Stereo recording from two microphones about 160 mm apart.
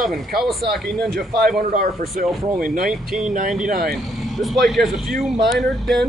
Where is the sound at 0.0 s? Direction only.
Centre (ahead or behind).